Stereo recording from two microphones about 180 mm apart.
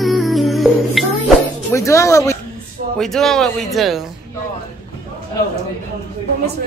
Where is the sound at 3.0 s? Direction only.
Centre (ahead or behind).